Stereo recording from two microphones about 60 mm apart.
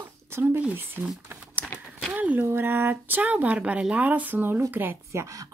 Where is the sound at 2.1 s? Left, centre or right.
Right.